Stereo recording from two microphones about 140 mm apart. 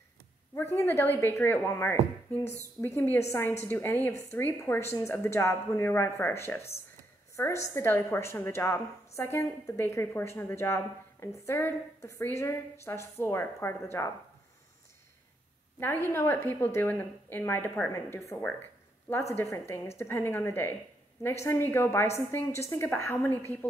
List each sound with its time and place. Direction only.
0.6 s a woman's voice: 15° left (ahead or behind)
15.8 s a woman's voice: 15° left (ahead or behind)